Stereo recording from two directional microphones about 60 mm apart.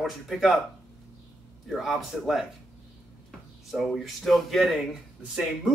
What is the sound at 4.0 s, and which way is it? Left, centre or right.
Speech, centre.